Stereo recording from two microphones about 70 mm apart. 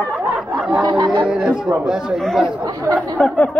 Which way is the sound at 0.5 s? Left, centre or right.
Centre.